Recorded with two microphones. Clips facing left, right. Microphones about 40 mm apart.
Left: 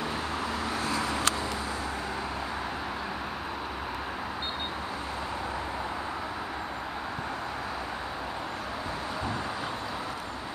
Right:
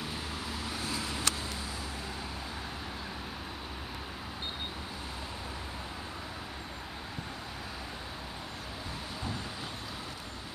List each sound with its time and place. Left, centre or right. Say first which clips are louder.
0.9 s vehicle: left 7 dB; left